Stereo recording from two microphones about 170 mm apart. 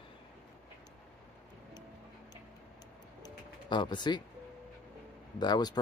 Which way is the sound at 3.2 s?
25° left (ahead or behind).